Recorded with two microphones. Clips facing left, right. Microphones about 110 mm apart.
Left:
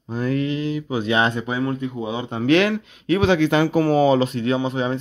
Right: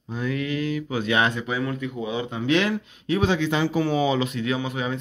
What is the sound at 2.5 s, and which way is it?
Speech, 75° left (ahead or behind).